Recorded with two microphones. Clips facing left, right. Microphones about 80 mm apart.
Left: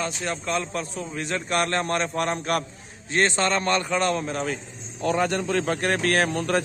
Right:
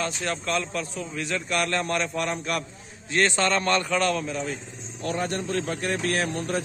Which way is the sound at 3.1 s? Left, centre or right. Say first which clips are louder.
Even; left.